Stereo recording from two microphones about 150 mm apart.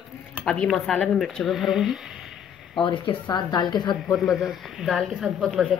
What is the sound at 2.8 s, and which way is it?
Speech, 35° left (ahead or behind).